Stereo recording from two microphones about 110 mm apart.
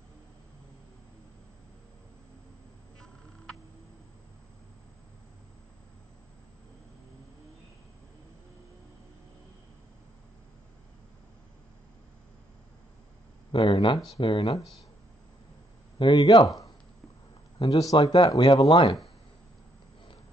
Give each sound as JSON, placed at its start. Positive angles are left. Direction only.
{"t": 13.5, "sound": "speech", "side_deg": 50}
{"t": 16.0, "sound": "speech", "side_deg": 40}